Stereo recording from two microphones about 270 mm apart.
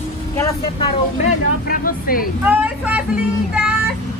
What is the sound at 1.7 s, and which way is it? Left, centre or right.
Speech, left.